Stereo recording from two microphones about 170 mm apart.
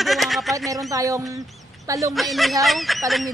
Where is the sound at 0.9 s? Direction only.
20° right (ahead or behind).